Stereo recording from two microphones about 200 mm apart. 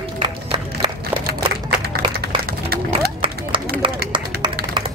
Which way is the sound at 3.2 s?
25° right (ahead or behind).